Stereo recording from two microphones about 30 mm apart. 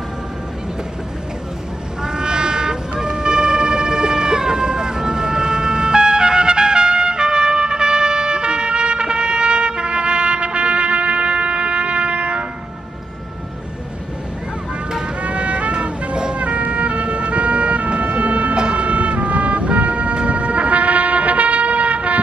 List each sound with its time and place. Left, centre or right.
2.0 s a sound: right
15.2 s music: right
16.3 s emergency vehicle: right
18.0 s music: right